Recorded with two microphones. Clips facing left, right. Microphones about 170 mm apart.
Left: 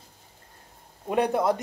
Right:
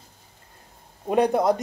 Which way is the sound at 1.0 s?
35° right (ahead or behind).